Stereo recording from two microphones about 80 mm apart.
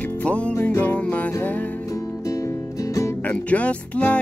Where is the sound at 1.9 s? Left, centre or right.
Left.